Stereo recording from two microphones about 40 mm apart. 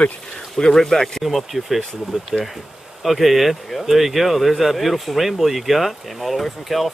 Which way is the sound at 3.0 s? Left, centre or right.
Centre.